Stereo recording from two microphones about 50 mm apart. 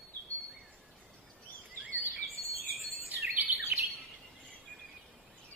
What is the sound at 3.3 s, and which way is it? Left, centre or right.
Bird, right.